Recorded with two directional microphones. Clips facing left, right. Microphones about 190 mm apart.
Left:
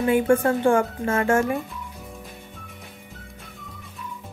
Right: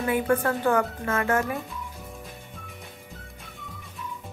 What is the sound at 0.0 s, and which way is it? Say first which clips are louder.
Speech: left 5 dB; 25° left (ahead or behind).